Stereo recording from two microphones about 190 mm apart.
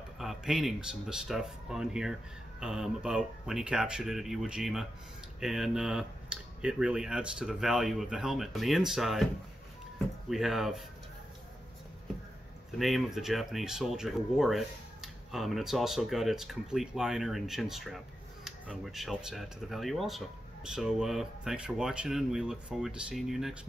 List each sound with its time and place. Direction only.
0.2 s speech: centre (ahead or behind)
10.3 s speech: centre (ahead or behind)
12.7 s speech: centre (ahead or behind)